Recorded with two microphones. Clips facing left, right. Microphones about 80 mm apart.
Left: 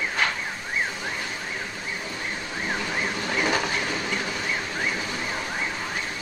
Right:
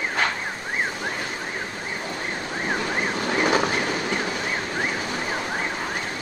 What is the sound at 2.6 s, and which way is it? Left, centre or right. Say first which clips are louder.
Ambulance: right 3 dB; right.